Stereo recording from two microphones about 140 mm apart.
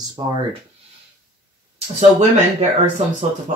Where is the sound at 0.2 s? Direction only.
35° right (ahead or behind).